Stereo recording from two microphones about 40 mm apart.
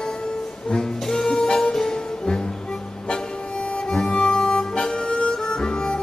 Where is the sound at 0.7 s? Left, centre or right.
Centre.